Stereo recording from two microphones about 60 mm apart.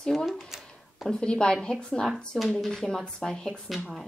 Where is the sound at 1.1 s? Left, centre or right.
Centre.